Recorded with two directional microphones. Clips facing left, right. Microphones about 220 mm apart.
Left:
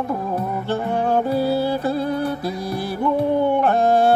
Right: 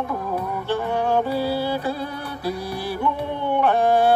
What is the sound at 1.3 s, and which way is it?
Mantra, 45° left (ahead or behind).